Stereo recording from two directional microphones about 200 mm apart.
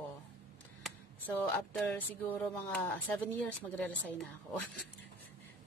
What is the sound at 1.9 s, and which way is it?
Speech, 10° left (ahead or behind).